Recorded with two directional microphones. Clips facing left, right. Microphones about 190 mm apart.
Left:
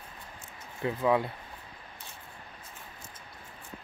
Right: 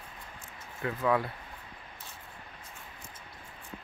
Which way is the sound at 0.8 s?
20° left (ahead or behind).